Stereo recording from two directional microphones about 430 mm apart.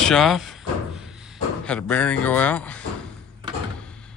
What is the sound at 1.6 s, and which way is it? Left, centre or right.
Speech, centre.